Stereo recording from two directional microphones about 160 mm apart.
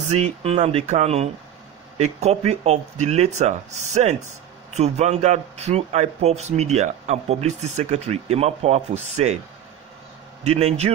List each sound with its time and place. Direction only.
0.1 s speech: 40° right (ahead or behind)
10.4 s speech: 40° right (ahead or behind)